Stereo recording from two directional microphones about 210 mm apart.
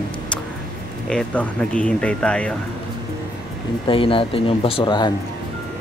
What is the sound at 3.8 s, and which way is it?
Speech, 25° left (ahead or behind).